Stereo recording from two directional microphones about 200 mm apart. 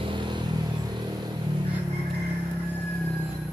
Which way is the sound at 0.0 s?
25° right (ahead or behind).